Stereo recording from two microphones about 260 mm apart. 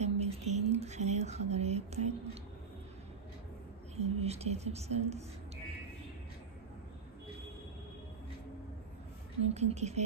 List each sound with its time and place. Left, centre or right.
0.0 s a sound: right
3.9 s whispering: right
9.4 s speech: right